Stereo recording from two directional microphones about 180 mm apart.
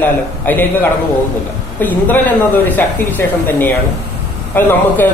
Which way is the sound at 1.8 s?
10° left (ahead or behind).